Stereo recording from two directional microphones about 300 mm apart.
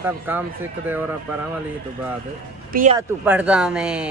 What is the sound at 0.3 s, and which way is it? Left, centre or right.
Speech, centre.